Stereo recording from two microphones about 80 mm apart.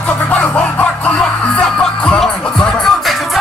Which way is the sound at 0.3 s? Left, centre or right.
Centre.